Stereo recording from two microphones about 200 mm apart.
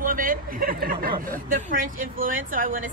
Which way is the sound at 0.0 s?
45° right (ahead or behind).